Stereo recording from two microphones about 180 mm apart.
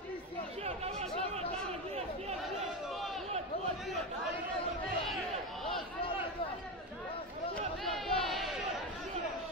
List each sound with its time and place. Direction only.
0.7 s chatter: 35° right (ahead or behind)
7.8 s crowd: centre (ahead or behind)